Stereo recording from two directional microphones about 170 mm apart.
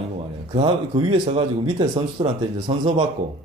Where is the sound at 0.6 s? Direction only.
30° right (ahead or behind).